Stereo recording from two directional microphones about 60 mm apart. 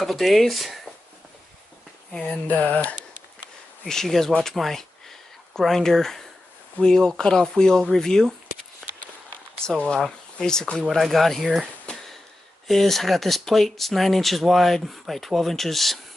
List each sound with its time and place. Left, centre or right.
0.0 s speech: centre
2.4 s speech: left
3.8 s speech: centre
9.8 s speech: centre
10.8 s speech: centre
12.6 s speech: centre